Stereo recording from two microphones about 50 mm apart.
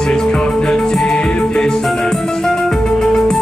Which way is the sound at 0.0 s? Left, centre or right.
Centre.